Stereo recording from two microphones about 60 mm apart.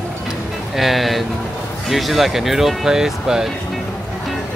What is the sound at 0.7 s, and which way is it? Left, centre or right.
Speech, centre.